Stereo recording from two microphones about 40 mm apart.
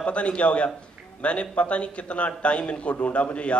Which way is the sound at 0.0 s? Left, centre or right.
Left.